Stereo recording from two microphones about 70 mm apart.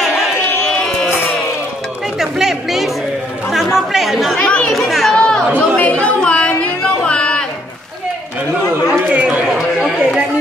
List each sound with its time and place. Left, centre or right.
0.7 s sheep: centre
2.1 s chatter: centre
4.4 s chatter: centre
4.7 s chatter: centre
5.1 s chatter: centre
5.8 s a sound: left
9.1 s chatter: centre